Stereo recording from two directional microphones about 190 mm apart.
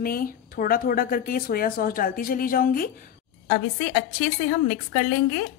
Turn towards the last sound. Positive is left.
turn(degrees=45)  # may be behind; listen again after turning